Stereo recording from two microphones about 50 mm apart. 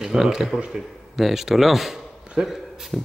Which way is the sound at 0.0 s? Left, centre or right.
Centre.